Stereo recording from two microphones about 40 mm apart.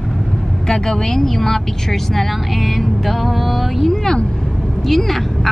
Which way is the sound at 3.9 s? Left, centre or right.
Centre.